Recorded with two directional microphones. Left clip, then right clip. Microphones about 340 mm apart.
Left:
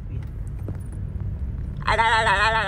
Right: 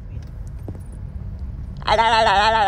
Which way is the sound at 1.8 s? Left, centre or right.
Right.